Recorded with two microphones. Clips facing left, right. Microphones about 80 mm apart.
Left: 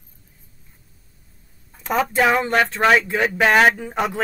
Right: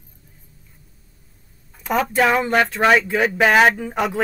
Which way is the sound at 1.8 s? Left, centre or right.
Centre.